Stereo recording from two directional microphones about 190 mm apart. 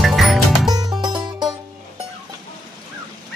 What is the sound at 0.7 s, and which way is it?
Music, 20° right (ahead or behind).